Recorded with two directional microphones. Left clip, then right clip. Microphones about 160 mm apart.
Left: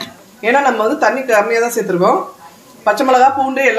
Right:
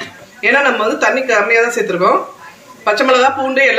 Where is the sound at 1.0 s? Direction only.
55° left (ahead or behind).